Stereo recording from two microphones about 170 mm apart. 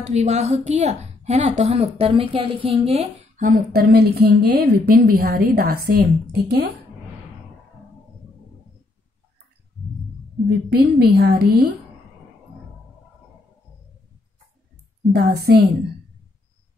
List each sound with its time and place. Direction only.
0.0 s a woman's voice: 40° right (ahead or behind); by 6.6 s 65° right (ahead or behind)
10.7 s a woman's voice: 70° right (ahead or behind)
15.1 s a woman's voice: 70° right (ahead or behind)